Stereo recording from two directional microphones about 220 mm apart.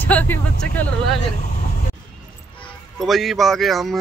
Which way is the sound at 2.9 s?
Centre (ahead or behind).